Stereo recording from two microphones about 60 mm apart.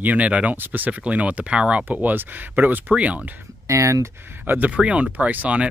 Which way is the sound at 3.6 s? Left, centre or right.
Right.